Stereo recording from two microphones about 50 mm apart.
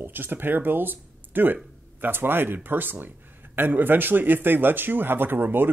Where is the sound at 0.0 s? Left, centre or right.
Right.